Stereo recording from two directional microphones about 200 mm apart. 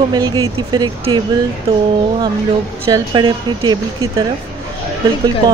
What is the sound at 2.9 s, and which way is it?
A woman's voice, 20° right (ahead or behind).